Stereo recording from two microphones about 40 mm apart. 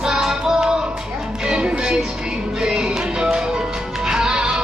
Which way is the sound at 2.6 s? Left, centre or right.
Centre.